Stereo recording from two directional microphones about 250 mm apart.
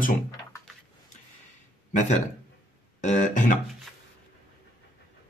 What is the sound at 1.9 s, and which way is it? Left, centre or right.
Speech, left.